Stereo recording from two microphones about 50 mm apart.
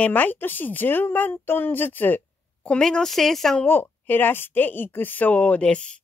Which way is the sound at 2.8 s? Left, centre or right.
Centre.